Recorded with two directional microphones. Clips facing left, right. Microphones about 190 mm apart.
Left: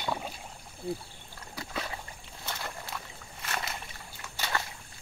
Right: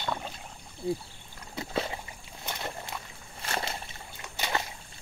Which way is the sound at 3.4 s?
30° right (ahead or behind).